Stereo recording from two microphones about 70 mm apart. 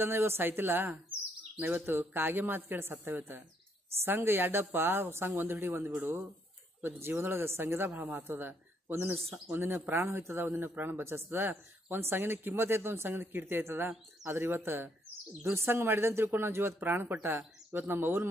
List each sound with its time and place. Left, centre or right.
0.0 s speech: right